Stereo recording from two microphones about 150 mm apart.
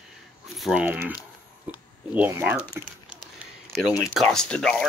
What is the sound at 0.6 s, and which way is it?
Speech, 10° right (ahead or behind).